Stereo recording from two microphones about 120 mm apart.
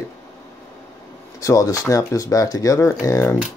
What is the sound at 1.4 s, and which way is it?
Speech, 30° left (ahead or behind).